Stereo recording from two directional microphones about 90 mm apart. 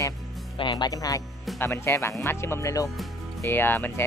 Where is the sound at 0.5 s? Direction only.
60° left (ahead or behind).